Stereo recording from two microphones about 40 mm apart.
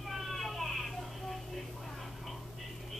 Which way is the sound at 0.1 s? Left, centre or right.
Centre.